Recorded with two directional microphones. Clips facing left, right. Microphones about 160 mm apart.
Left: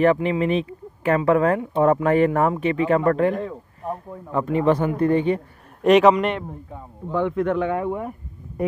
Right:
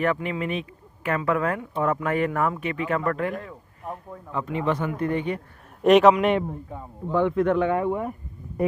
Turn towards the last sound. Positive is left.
turn(degrees=5)  # may be behind; listen again after turning